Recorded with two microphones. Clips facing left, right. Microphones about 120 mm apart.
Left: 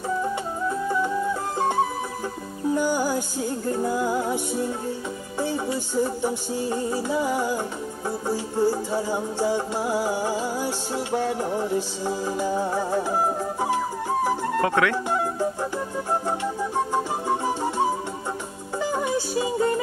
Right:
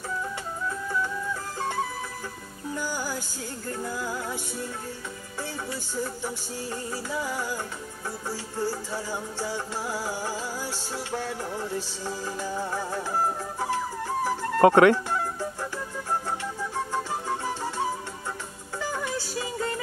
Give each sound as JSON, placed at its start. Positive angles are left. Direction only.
{"t": 0.2, "sound": "music", "side_deg": 20}
{"t": 2.7, "sound": "music", "side_deg": 20}
{"t": 14.6, "sound": "speech", "side_deg": -40}
{"t": 15.0, "sound": "music", "side_deg": 20}